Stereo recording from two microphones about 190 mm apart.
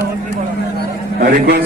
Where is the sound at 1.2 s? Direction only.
50° right (ahead or behind).